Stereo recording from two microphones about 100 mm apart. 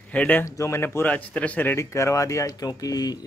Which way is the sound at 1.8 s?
30° left (ahead or behind).